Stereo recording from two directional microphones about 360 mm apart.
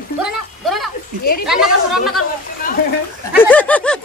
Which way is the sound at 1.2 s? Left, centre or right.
Left.